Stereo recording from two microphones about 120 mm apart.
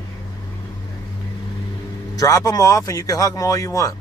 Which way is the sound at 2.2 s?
30° left (ahead or behind).